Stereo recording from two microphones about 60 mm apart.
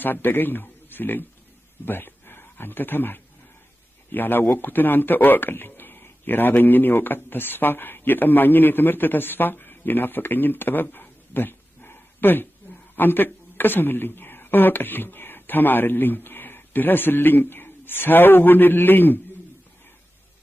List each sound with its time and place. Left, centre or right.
0.0 s speech: left